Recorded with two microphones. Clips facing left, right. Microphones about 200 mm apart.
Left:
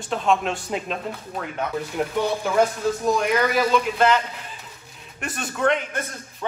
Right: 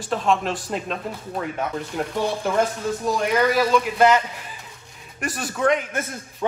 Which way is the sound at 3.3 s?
Centre (ahead or behind).